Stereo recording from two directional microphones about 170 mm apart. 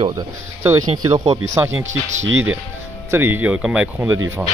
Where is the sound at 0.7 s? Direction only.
20° right (ahead or behind).